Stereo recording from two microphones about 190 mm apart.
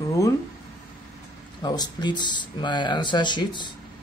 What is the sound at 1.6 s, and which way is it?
Speech, 20° left (ahead or behind).